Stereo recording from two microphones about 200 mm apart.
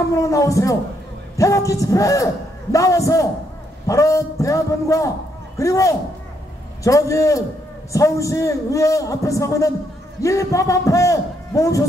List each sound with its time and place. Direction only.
0.1 s a man's voice: 15° left (ahead or behind)